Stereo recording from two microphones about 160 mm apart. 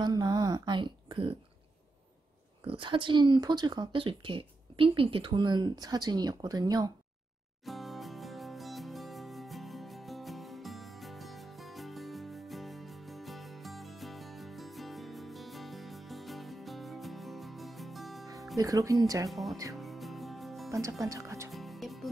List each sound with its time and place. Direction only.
0.0 s a sound: 25° right (ahead or behind)
2.6 s speech: 30° right (ahead or behind)
7.6 s music: centre (ahead or behind)
18.6 s speech: 20° right (ahead or behind)
19.7 s music: centre (ahead or behind)
21.0 s speech: 20° right (ahead or behind)
21.5 s music: centre (ahead or behind)